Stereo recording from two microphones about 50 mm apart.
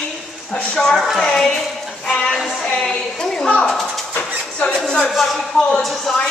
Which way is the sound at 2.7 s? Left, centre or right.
Centre.